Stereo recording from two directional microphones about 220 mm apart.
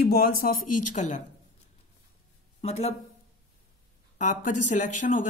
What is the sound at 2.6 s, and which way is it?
Speech, 30° left (ahead or behind).